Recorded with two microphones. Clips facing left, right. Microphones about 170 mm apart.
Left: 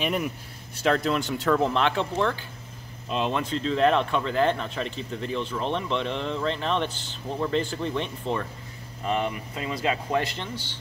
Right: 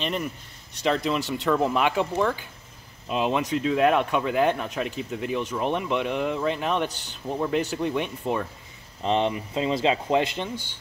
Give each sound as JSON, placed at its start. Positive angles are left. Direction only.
{"t": 0.0, "sound": "speech", "side_deg": 5}
{"t": 9.0, "sound": "speech", "side_deg": -25}
{"t": 10.5, "sound": "speech", "side_deg": -50}